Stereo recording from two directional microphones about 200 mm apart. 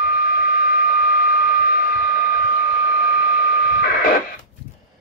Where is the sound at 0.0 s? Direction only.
45° left (ahead or behind).